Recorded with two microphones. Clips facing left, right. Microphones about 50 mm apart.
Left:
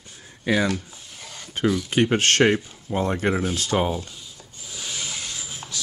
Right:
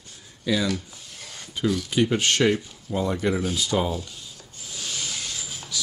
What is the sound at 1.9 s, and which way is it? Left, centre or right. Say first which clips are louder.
Speech: left 2 dB; left.